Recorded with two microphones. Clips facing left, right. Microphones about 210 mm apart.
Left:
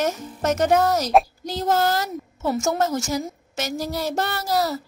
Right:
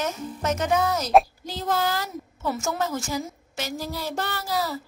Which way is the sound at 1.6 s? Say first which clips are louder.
Left 5 dB; 40° left (ahead or behind).